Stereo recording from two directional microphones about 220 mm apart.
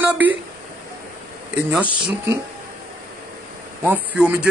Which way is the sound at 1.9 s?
20° right (ahead or behind).